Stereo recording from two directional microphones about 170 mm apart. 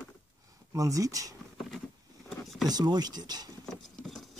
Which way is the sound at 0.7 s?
20° right (ahead or behind).